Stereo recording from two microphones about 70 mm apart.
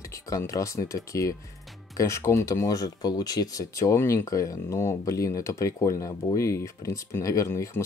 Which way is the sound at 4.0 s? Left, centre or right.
Left.